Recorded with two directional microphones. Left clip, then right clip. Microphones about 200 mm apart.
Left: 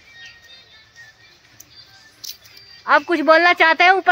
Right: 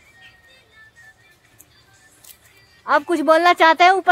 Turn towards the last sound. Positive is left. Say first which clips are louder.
# even
turn(degrees=-5)  # may be behind; listen again after turning